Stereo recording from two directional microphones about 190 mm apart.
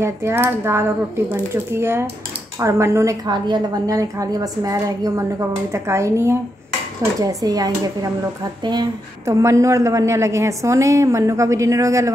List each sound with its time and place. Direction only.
0.0 s a woman's voice: 15° right (ahead or behind)